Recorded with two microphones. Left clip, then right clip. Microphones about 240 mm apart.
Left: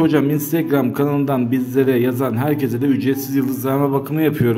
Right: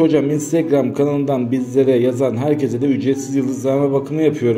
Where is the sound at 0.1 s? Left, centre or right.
Centre.